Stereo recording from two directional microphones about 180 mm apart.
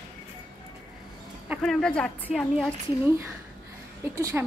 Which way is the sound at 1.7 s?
5° left (ahead or behind).